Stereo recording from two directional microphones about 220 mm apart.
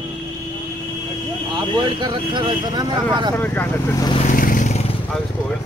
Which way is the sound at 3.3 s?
10° left (ahead or behind).